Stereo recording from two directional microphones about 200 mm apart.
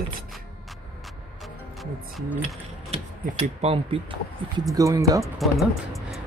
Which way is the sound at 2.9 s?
35° right (ahead or behind).